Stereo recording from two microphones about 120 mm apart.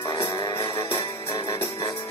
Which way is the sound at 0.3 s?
25° left (ahead or behind).